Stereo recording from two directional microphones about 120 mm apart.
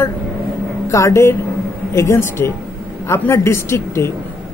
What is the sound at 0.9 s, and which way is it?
A woman's voice, 25° left (ahead or behind).